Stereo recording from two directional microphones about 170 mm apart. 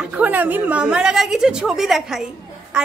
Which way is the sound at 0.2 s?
10° right (ahead or behind).